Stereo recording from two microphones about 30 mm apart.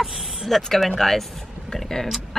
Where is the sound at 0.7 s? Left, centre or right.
Centre.